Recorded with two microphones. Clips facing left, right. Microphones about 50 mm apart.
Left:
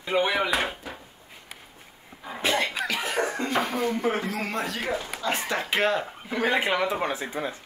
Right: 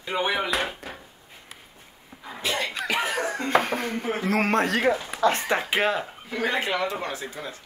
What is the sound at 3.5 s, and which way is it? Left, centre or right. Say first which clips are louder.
Dishes: right 3 dB; right.